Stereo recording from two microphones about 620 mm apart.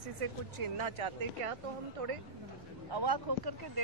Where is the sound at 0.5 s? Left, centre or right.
Right.